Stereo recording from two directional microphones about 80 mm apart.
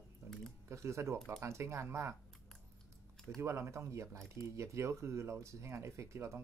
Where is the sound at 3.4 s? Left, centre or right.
Right.